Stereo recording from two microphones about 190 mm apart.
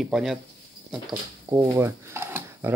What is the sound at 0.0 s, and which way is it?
Speech, centre (ahead or behind).